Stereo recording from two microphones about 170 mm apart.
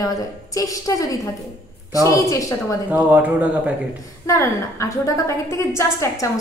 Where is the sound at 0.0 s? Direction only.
20° left (ahead or behind).